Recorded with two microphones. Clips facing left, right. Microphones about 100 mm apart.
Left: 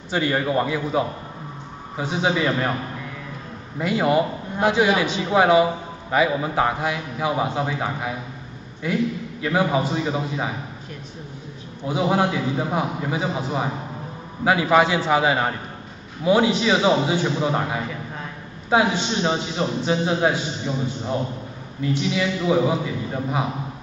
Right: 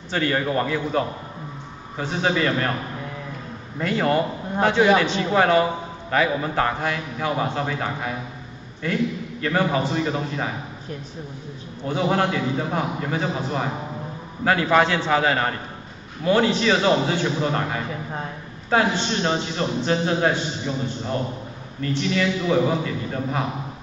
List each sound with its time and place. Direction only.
0.1 s a man's voice: 10° left (ahead or behind)
3.8 s a man's voice: 10° left (ahead or behind)
11.8 s a man's voice: 10° left (ahead or behind)